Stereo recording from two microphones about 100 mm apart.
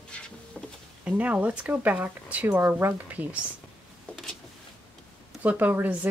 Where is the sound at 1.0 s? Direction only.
15° right (ahead or behind).